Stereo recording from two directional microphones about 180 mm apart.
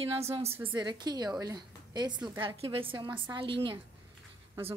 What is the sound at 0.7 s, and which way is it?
A woman's voice, 25° right (ahead or behind).